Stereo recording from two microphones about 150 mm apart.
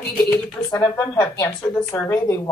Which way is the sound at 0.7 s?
25° left (ahead or behind).